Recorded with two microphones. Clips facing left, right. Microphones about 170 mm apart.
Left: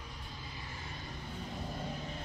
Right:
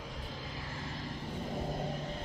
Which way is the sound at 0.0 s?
90° right.